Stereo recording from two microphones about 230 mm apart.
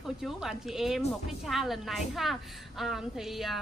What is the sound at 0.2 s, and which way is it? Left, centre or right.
Speech, centre.